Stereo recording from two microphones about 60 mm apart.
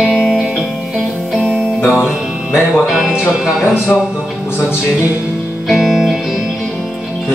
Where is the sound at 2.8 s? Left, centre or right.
Centre.